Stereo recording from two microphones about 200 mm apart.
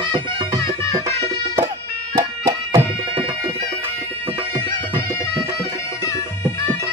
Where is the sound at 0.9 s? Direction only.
20° right (ahead or behind).